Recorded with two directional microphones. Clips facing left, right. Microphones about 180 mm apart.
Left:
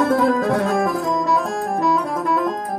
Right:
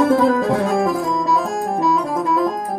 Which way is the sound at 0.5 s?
20° right (ahead or behind).